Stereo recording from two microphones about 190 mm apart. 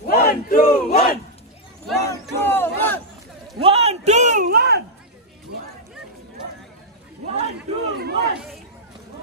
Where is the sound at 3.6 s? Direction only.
30° right (ahead or behind); by 4.8 s 55° right (ahead or behind).